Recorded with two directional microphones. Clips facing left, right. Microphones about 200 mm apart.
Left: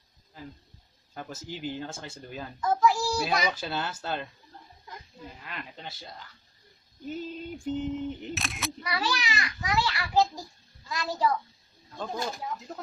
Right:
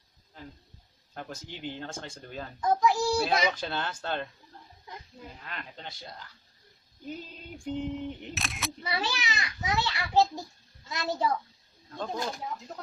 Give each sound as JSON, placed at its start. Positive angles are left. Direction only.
{"t": 1.1, "sound": "speech", "side_deg": 5}
{"t": 2.6, "sound": "a sound", "side_deg": -20}
{"t": 3.5, "sound": "speech", "side_deg": 5}
{"t": 5.4, "sound": "speech", "side_deg": 5}
{"t": 8.8, "sound": "a child's voice", "side_deg": -25}